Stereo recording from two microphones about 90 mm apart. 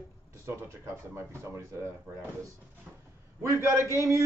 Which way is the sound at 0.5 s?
30° right (ahead or behind).